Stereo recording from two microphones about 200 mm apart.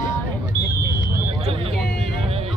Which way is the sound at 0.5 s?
50° left (ahead or behind).